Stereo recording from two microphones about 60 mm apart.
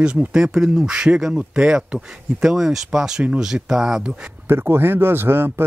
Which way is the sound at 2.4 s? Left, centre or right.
Centre.